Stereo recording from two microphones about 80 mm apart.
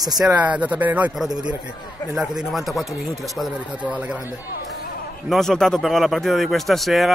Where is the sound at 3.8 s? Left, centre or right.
Centre.